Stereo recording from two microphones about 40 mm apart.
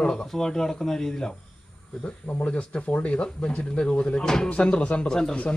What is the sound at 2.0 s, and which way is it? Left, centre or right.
Speech, left.